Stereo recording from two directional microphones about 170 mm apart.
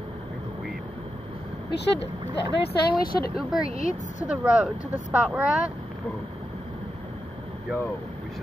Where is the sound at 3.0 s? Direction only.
60° left (ahead or behind).